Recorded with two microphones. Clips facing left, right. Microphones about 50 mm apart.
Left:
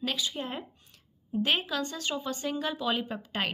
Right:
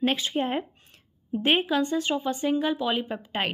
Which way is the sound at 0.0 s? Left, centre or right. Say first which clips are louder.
Right 7 dB; right.